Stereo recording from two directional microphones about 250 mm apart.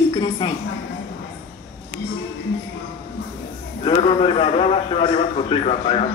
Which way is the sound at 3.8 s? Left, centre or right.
Left.